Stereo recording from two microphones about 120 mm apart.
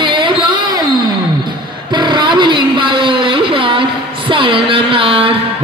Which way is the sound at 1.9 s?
40° right (ahead or behind).